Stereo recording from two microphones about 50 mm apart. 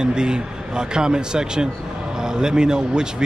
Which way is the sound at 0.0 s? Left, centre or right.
Centre.